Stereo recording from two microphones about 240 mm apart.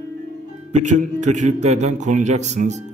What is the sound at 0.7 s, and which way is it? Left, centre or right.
A man's voice, right.